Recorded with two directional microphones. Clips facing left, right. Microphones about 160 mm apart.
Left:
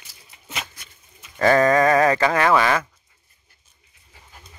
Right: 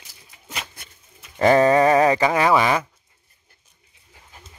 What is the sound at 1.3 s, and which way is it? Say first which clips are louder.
Speech: right 1 dB; 20° right (ahead or behind).